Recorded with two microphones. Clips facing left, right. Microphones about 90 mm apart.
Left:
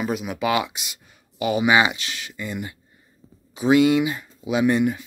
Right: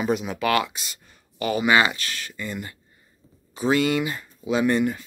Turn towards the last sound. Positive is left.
turn(degrees=10)  # may be behind; listen again after turning